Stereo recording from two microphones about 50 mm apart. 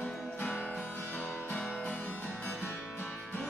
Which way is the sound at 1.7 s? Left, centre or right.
Left.